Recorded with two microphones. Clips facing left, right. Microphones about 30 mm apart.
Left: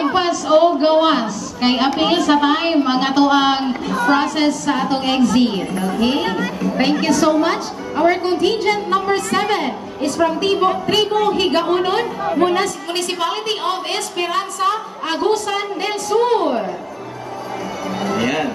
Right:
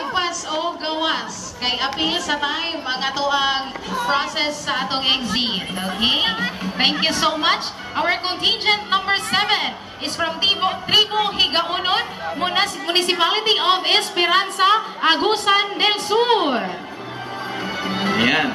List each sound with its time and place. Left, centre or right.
0.1 s a woman's voice: centre
4.5 s a woman's voice: right
12.5 s a woman's voice: right
17.8 s speech: right